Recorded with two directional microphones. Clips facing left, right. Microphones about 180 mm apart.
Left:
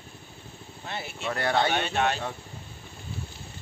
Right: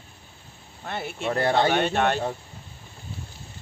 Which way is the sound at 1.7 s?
55° right (ahead or behind).